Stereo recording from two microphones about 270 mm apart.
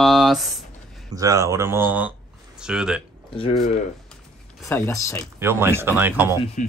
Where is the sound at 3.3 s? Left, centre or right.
Left.